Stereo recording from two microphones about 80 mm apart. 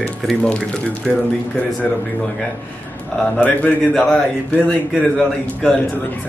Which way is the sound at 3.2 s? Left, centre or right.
Centre.